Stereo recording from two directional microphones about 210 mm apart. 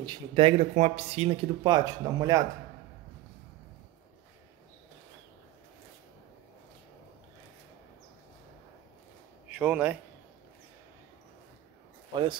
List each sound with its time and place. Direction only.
0.0 s speech: 20° right (ahead or behind)
9.5 s a man's voice: 10° right (ahead or behind)